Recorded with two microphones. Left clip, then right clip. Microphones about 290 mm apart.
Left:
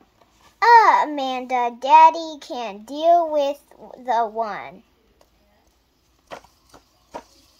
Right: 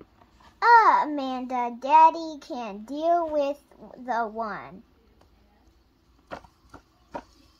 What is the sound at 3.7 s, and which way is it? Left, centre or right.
A woman's voice, left.